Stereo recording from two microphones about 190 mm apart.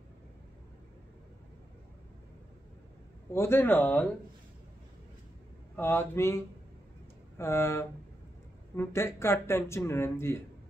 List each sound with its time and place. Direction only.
3.3 s speech: 10° left (ahead or behind)
5.8 s speech: 10° left (ahead or behind)